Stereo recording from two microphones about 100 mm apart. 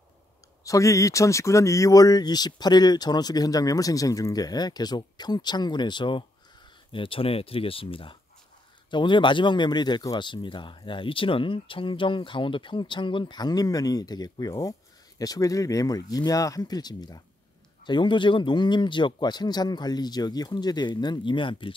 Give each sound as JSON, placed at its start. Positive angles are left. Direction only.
{"t": 0.7, "sound": "speech", "side_deg": 35}
{"t": 6.9, "sound": "speech", "side_deg": 65}
{"t": 8.9, "sound": "speech", "side_deg": 50}
{"t": 17.8, "sound": "speech", "side_deg": 50}